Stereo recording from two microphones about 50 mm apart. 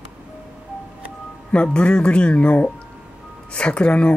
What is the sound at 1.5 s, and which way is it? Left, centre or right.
Speech, left.